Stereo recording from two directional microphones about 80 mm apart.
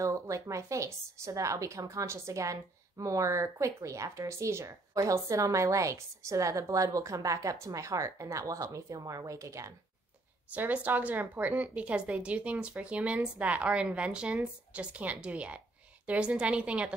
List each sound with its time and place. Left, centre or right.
0.0 s a woman's voice: right
10.5 s speech: centre